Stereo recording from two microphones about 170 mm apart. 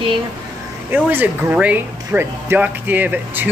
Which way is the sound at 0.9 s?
10° right (ahead or behind).